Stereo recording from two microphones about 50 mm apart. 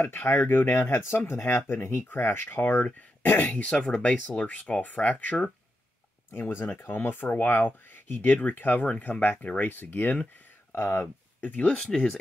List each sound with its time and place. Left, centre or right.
0.0 s speech: left
3.6 s speech: centre
6.3 s speech: left
8.4 s speech: left
10.7 s speech: left
11.4 s speech: left
11.7 s speech: centre